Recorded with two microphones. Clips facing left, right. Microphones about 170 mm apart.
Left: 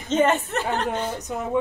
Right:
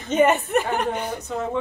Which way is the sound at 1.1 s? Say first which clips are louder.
Right 1 dB; 15° left (ahead or behind).